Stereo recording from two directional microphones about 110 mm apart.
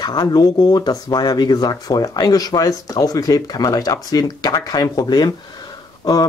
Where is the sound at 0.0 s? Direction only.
40° left (ahead or behind).